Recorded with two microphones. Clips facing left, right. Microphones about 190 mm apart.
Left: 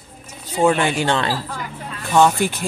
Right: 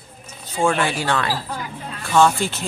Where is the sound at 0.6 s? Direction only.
20° left (ahead or behind).